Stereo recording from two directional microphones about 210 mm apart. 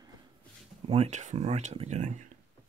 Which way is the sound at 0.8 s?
30° right (ahead or behind).